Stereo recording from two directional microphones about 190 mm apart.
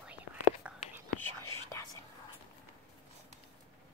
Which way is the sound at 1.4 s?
15° left (ahead or behind).